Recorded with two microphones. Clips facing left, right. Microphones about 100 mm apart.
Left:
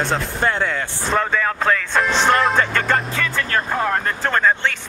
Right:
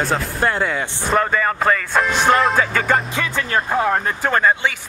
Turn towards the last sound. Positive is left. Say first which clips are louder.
# right 1 dB
turn(degrees=-5)  # may be behind; listen again after turning